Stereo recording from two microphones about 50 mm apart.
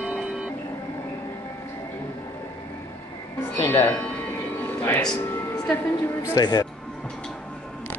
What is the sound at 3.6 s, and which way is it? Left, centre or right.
Music, left.